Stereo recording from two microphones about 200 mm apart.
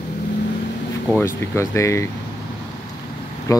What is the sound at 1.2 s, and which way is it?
Speech, 15° left (ahead or behind).